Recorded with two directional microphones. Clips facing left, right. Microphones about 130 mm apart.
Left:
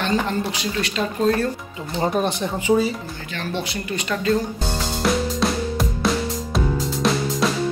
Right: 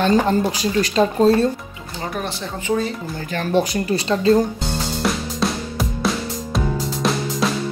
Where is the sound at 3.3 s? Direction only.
40° right (ahead or behind).